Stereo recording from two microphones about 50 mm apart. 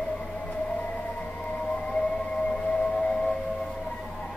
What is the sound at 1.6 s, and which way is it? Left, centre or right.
Whale vocalization, centre.